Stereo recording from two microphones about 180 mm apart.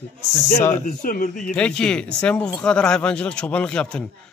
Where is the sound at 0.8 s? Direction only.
50° left (ahead or behind).